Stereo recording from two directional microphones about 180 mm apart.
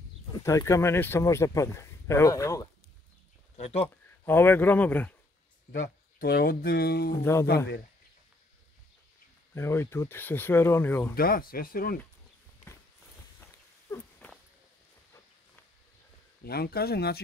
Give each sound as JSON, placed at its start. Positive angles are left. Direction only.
{"t": 0.3, "sound": "speech", "side_deg": 20}
{"t": 3.6, "sound": "speech", "side_deg": 30}
{"t": 3.9, "sound": "speech", "side_deg": 10}
{"t": 5.8, "sound": "speech", "side_deg": 55}
{"t": 9.5, "sound": "speech", "side_deg": 15}
{"t": 11.1, "sound": "speech", "side_deg": 55}
{"t": 13.4, "sound": "walk", "side_deg": 15}
{"t": 16.4, "sound": "speech", "side_deg": 60}